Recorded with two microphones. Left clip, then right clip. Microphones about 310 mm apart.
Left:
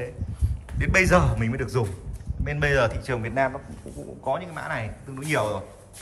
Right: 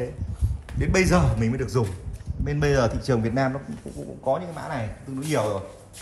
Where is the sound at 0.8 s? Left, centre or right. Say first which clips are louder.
Left 2 dB; centre.